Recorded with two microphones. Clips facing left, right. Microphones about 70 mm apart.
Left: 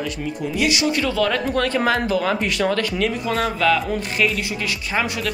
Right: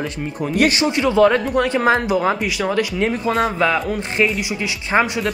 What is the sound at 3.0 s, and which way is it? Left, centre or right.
Speech, right.